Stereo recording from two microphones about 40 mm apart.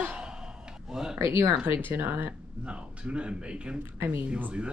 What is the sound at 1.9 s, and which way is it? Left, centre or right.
Speech, right.